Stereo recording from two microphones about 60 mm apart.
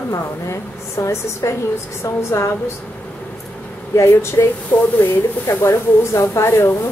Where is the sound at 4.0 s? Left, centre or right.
Left.